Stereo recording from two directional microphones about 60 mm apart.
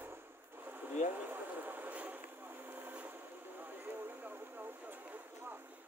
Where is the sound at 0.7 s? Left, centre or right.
Right.